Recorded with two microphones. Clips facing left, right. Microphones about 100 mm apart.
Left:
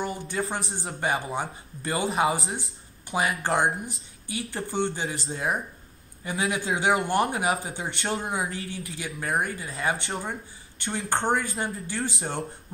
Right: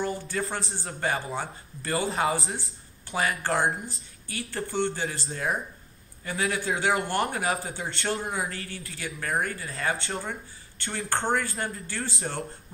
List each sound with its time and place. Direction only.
0.0 s a man's voice: 15° left (ahead or behind)